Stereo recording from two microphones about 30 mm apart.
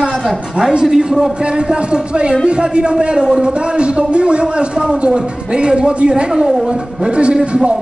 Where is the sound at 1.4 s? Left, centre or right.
Right.